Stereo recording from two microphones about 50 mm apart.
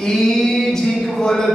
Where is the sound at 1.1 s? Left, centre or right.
Centre.